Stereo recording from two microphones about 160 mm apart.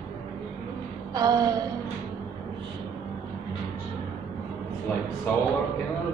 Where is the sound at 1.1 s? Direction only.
25° right (ahead or behind).